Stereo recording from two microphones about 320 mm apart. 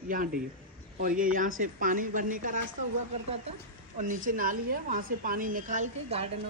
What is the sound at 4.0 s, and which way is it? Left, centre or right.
A woman's voice, right.